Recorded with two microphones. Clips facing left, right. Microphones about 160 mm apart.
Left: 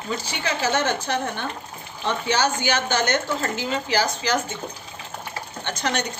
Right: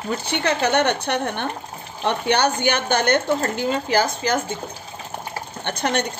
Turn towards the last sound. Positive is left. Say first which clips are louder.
# right 3 dB
turn(degrees=-55)  # may be behind; listen again after turning